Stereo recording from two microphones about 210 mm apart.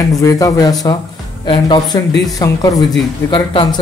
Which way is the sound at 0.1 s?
15° left (ahead or behind).